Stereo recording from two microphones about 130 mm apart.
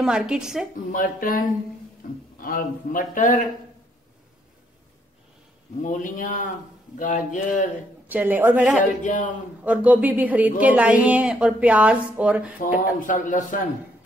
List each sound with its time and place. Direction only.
0.0 s a woman's voice: 5° right (ahead or behind)
0.9 s a man's voice: 90° left
5.8 s a man's voice: 85° left
8.1 s speech: 15° right (ahead or behind)
9.0 s a man's voice: 75° left (ahead or behind)
9.6 s speech: 10° right (ahead or behind)
12.5 s a man's voice: 90° left